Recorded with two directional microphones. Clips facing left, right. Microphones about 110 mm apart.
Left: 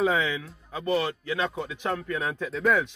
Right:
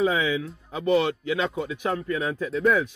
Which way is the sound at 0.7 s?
20° right (ahead or behind).